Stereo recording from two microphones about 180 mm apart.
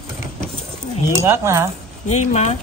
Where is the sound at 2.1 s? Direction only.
40° left (ahead or behind).